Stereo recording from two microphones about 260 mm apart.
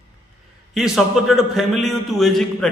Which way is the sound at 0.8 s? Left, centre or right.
Centre.